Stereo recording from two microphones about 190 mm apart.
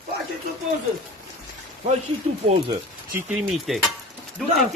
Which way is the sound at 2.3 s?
35° right (ahead or behind).